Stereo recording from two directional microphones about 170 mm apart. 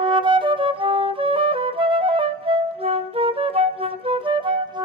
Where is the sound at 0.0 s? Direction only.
30° right (ahead or behind).